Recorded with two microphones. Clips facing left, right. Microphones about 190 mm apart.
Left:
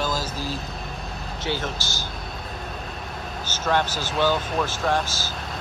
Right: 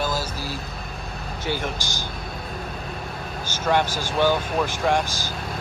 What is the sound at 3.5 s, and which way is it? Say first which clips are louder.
Speech: right 2 dB; 10° right (ahead or behind).